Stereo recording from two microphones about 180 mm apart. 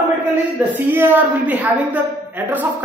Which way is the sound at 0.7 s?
10° right (ahead or behind).